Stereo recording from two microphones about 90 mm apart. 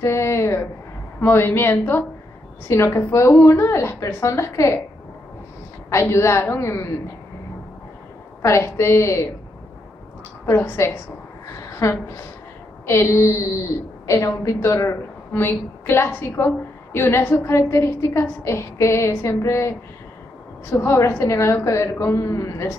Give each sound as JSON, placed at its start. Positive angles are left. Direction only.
{"t": 0.0, "sound": "a sound", "side_deg": 30}
{"t": 1.2, "sound": "a woman's voice", "side_deg": 25}
{"t": 5.9, "sound": "a woman's voice", "side_deg": 30}
{"t": 8.4, "sound": "a woman's voice", "side_deg": 30}
{"t": 10.4, "sound": "a woman's voice", "side_deg": 30}
{"t": 11.6, "sound": "a sound", "side_deg": 35}
{"t": 12.8, "sound": "a woman's voice", "side_deg": 30}
{"t": 20.7, "sound": "a woman's voice", "side_deg": 30}